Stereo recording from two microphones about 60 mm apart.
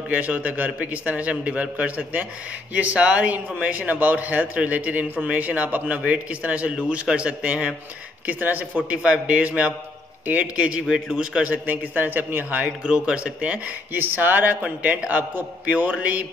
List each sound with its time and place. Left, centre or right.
0.1 s a man's voice: right
10.9 s a man's voice: centre
11.4 s a man's voice: right
12.8 s a man's voice: centre
13.9 s a man's voice: right